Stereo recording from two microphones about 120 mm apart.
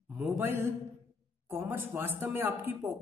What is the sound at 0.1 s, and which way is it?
A man's voice, 20° right (ahead or behind).